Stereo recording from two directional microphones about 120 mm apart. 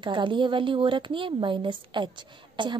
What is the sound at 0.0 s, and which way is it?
A woman's voice, 45° right (ahead or behind).